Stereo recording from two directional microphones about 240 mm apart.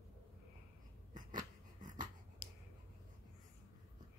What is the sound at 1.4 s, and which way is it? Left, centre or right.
Dog, centre.